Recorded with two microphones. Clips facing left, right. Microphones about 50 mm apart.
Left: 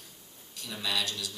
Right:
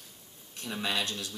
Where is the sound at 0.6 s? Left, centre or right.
Right.